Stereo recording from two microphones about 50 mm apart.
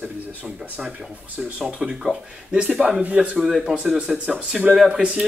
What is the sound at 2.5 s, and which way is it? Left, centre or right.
Speech, right.